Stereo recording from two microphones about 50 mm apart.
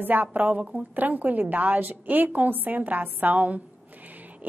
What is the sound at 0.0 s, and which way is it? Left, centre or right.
A woman's voice, right.